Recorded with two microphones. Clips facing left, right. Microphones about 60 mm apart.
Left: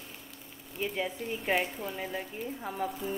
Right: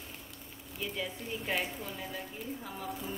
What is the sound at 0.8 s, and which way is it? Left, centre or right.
Speech, left.